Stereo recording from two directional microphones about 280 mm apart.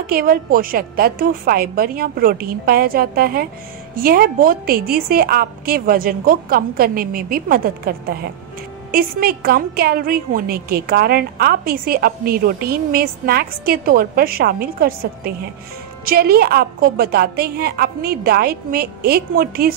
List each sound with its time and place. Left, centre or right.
0.0 s a woman's voice: right